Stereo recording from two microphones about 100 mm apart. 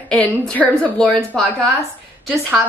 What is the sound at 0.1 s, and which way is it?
A woman's voice, 10° left (ahead or behind).